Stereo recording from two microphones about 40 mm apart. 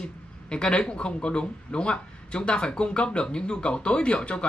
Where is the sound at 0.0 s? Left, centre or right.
Left.